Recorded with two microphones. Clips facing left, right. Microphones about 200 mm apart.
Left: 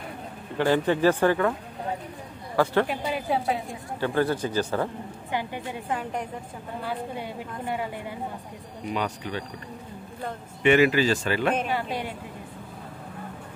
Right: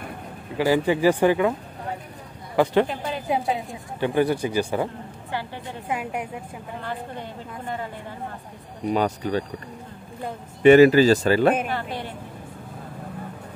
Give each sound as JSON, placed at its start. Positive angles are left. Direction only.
{"t": 0.6, "sound": "speech", "side_deg": -10}
{"t": 2.5, "sound": "speech", "side_deg": -15}
{"t": 5.3, "sound": "a woman's voice", "side_deg": 15}
{"t": 5.9, "sound": "speech", "side_deg": -10}
{"t": 6.8, "sound": "a woman's voice", "side_deg": 10}
{"t": 8.9, "sound": "speech", "side_deg": -40}
{"t": 10.6, "sound": "speech", "side_deg": -40}
{"t": 11.7, "sound": "a woman's voice", "side_deg": 15}